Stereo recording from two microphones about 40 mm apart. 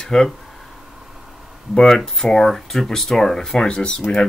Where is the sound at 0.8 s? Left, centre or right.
Centre.